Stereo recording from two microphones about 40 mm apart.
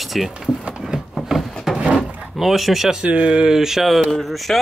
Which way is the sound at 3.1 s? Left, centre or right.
Right.